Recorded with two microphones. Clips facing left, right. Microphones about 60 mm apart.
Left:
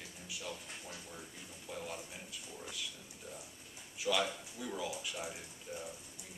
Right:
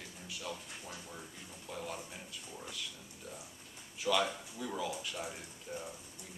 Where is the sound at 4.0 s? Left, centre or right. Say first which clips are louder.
Right 2 dB; centre.